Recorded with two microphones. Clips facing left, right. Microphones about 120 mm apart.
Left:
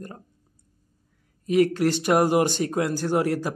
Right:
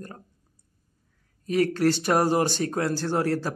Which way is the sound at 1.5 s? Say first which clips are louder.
Left 2 dB; 15° left (ahead or behind).